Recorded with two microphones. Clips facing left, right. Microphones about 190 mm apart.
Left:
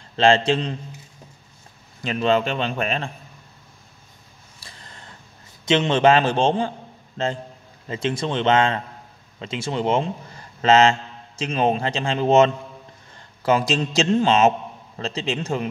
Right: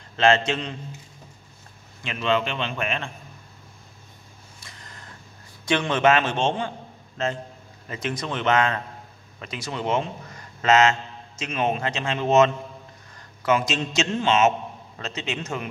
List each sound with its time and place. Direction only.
0.1 s a man's voice: 30° left (ahead or behind)
2.0 s a man's voice: 40° left (ahead or behind)
4.6 s a sound: 30° left (ahead or behind)
5.7 s a man's voice: 25° left (ahead or behind)